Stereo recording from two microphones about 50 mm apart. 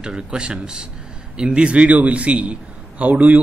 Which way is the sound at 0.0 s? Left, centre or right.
Centre.